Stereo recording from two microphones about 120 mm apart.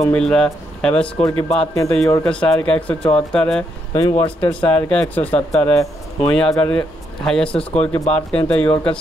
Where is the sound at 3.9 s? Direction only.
25° left (ahead or behind).